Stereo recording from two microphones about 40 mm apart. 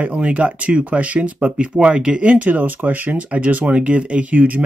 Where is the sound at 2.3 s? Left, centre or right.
Right.